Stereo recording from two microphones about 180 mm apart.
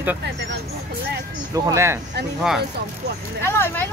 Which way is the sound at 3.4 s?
15° left (ahead or behind).